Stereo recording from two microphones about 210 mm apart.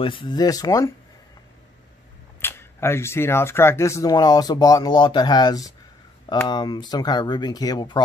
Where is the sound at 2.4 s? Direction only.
10° left (ahead or behind).